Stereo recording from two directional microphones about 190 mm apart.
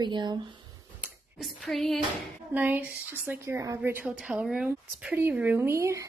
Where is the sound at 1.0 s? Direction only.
Centre (ahead or behind).